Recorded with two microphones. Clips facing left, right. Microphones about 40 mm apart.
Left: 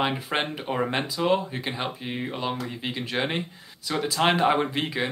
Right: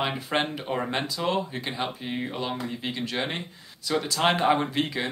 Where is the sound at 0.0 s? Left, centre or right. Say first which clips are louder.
Left 1 dB; centre.